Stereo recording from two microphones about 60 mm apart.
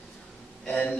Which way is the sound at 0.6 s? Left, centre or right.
Left.